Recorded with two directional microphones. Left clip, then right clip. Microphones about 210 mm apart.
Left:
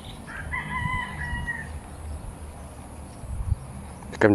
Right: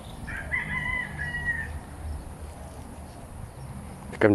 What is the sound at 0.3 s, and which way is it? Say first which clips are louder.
Chicken: right 2 dB; 45° right (ahead or behind).